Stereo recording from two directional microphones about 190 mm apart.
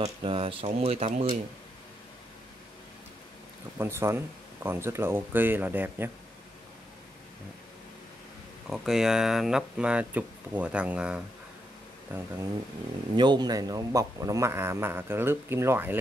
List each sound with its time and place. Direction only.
0.0 s speech: 30° right (ahead or behind)
3.7 s a man's voice: 15° right (ahead or behind)
8.6 s a man's voice: centre (ahead or behind)
13.1 s a man's voice: 25° right (ahead or behind)